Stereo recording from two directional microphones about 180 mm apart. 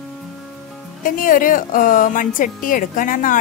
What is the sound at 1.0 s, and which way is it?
A woman's voice, 50° left (ahead or behind).